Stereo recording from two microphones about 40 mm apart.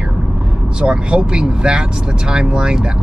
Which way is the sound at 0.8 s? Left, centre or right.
Right.